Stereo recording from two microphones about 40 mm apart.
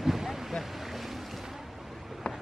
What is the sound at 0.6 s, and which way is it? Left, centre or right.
Boat, centre.